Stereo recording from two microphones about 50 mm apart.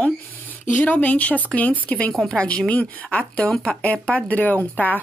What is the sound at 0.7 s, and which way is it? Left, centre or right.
Speech, left.